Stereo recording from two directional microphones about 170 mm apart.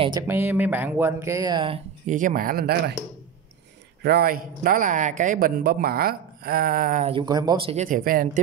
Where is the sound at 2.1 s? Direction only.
55° right (ahead or behind).